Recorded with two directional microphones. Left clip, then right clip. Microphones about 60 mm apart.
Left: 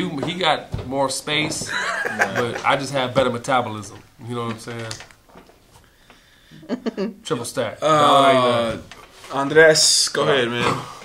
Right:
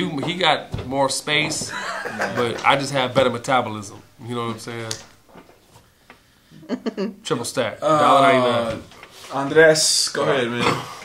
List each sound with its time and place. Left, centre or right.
0.0 s speech: centre
1.7 s speech: left
2.4 s speech: centre
6.7 s speech: centre
7.4 s speech: centre
7.8 s speech: left
10.6 s a man's voice: right